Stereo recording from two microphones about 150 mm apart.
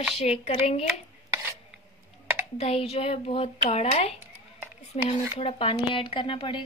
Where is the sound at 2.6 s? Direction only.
40° left (ahead or behind).